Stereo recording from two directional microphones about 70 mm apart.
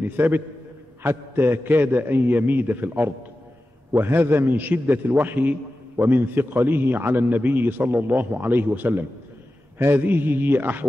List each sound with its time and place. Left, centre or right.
0.0 s a man's voice: right